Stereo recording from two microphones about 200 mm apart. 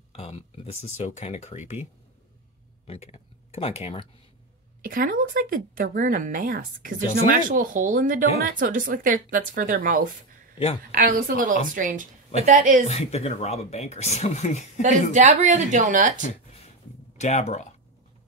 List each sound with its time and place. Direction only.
0.1 s speech: 30° left (ahead or behind)
2.9 s speech: 30° left (ahead or behind)
4.8 s speech: 45° right (ahead or behind)
12.8 s speech: 30° left (ahead or behind)
14.8 s speech: 35° right (ahead or behind)
17.2 s speech: 35° left (ahead or behind)